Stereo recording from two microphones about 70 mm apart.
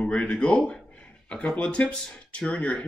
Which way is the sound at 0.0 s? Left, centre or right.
Centre.